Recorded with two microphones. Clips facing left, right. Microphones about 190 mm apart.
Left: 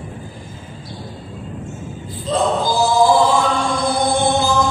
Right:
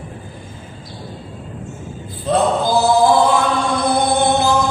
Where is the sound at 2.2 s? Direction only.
60° right (ahead or behind).